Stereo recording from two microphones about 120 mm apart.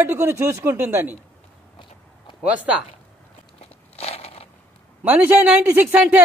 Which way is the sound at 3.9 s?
60° left (ahead or behind).